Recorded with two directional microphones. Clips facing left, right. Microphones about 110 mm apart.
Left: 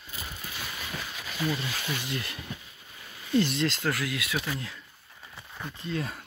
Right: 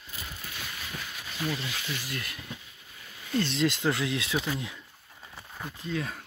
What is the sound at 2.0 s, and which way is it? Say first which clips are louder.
Speech: left 3 dB; 25° left (ahead or behind).